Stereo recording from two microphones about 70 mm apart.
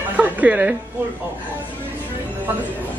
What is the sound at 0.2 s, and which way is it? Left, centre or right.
Music, right.